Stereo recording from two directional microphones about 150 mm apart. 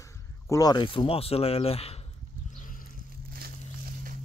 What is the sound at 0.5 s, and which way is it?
Speech, 25° left (ahead or behind).